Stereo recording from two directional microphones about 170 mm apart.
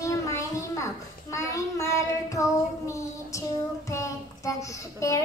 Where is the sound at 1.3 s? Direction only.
20° left (ahead or behind).